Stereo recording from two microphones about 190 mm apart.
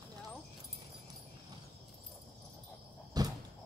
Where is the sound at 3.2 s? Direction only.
20° right (ahead or behind).